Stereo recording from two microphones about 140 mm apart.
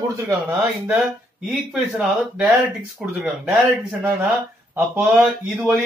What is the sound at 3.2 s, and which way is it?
Speech, 5° right (ahead or behind).